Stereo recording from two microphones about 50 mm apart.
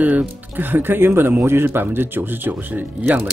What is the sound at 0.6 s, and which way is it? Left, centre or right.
Speech, right.